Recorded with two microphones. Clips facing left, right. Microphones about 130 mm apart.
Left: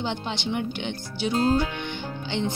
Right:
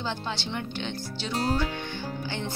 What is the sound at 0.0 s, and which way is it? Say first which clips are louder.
Speech: left 3 dB; 15° left (ahead or behind).